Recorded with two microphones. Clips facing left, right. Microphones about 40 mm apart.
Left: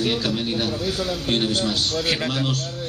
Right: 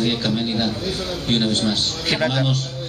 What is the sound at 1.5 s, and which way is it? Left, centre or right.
A man's voice, centre.